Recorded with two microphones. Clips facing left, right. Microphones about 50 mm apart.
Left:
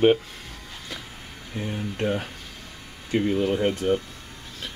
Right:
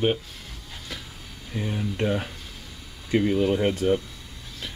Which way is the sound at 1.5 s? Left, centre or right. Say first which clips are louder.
Right 1 dB; centre.